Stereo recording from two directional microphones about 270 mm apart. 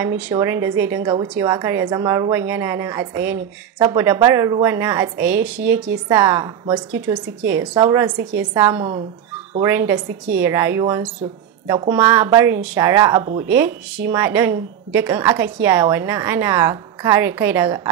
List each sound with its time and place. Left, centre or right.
0.0 s a woman's voice: centre
8.2 s a woman's voice: right
8.5 s a woman's voice: centre